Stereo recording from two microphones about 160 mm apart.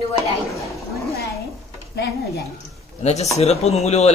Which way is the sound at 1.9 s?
90° left.